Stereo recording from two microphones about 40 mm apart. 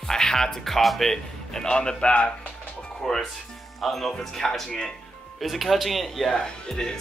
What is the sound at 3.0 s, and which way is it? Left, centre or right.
Speech, centre.